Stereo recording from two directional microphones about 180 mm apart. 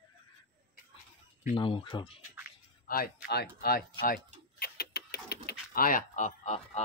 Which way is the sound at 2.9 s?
55° left (ahead or behind).